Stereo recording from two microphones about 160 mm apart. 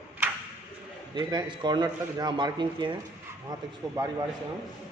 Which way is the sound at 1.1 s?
30° right (ahead or behind).